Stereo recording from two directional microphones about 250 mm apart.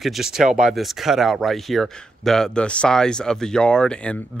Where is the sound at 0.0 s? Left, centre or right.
Centre.